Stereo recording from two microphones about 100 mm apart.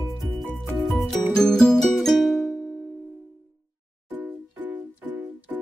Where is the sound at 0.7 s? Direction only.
5° right (ahead or behind).